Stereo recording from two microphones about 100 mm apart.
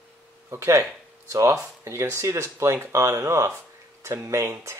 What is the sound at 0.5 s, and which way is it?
Speech, 25° right (ahead or behind).